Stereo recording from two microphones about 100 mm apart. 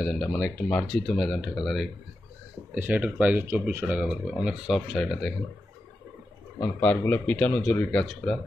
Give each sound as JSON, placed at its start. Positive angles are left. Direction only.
{"t": 0.0, "sound": "speech", "side_deg": 5}
{"t": 2.7, "sound": "speech", "side_deg": -15}
{"t": 6.6, "sound": "a man's voice", "side_deg": 20}